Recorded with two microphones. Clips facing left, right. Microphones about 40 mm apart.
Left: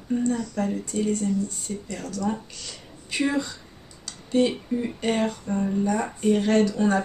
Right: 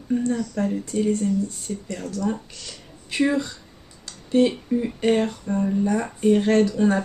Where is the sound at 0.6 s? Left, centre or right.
Centre.